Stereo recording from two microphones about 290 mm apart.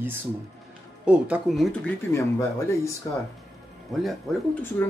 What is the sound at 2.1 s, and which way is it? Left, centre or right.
Speech, centre.